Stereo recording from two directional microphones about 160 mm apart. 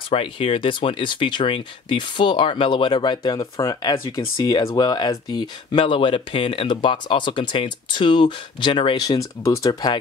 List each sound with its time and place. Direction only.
0.1 s speech: 35° left (ahead or behind)